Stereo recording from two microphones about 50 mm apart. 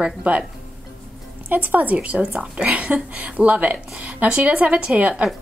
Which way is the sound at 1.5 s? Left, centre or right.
Right.